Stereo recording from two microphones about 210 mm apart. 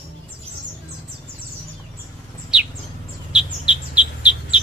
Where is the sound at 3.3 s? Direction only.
5° right (ahead or behind).